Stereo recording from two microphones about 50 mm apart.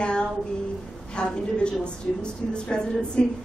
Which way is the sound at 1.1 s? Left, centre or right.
Centre.